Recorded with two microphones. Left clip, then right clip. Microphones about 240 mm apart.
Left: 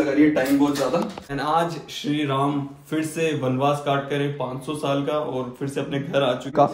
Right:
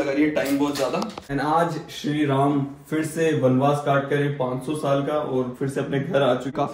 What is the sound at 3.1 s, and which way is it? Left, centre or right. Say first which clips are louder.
Speech: right 5 dB; centre.